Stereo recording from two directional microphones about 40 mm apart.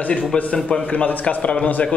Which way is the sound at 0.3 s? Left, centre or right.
Left.